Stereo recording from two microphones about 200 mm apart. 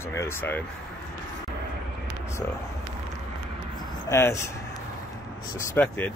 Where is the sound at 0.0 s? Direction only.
15° left (ahead or behind).